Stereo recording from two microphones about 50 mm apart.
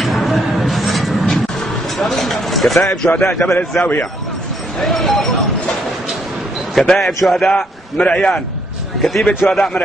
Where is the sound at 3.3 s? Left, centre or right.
Left.